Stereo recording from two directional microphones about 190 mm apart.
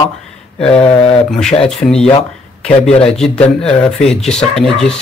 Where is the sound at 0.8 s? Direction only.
30° left (ahead or behind).